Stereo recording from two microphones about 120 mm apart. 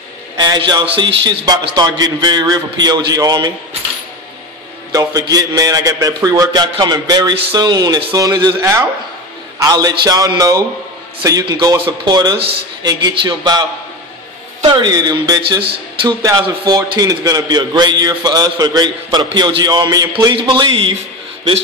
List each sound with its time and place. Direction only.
0.4 s a man's voice: 35° right (ahead or behind)
4.9 s a man's voice: 30° right (ahead or behind)
20.3 s speech: 45° right (ahead or behind)